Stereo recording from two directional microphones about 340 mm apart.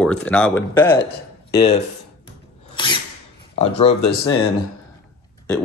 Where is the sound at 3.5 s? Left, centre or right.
Centre.